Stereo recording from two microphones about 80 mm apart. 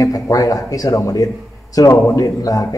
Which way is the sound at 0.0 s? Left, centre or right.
Left.